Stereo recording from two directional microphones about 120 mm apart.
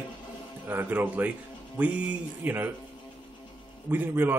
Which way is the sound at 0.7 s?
15° right (ahead or behind).